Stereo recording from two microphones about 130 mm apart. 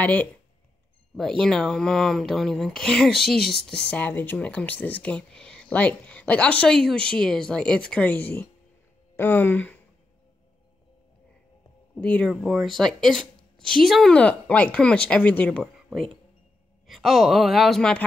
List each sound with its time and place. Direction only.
0.0 s speech: 10° left (ahead or behind)
12.0 s speech: 10° left (ahead or behind)
15.6 s speech: centre (ahead or behind)